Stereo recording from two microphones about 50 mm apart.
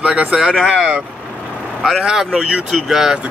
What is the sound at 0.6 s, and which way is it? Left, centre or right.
Speech, centre.